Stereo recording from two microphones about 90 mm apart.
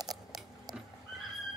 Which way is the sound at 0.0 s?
45° right (ahead or behind).